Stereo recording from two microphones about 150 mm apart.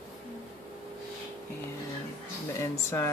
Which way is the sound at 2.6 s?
20° left (ahead or behind).